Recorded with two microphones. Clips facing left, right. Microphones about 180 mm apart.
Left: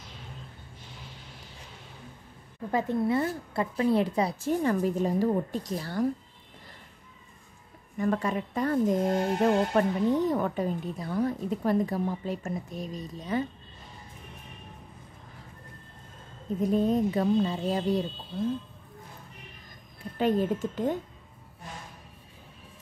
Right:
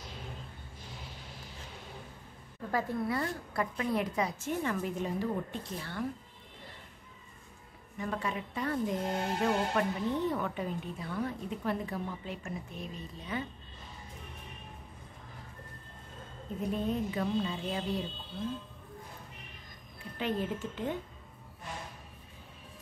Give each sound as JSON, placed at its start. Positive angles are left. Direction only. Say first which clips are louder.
{"t": 2.7, "sound": "speech", "louder": "left 6 dB", "side_deg": 25}
{"t": 8.0, "sound": "speech", "louder": "left 8 dB", "side_deg": 45}
{"t": 16.7, "sound": "speech", "louder": "left 8 dB", "side_deg": 40}
{"t": 20.2, "sound": "speech", "louder": "left 8 dB", "side_deg": 45}